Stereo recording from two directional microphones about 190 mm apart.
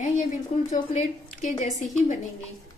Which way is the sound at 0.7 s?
40° left (ahead or behind).